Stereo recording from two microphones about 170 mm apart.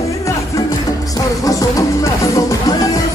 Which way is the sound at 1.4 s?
20° left (ahead or behind).